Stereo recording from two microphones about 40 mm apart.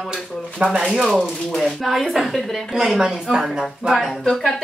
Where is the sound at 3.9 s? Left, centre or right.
Centre.